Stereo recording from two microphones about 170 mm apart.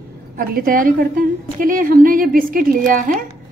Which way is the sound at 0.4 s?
55° right (ahead or behind).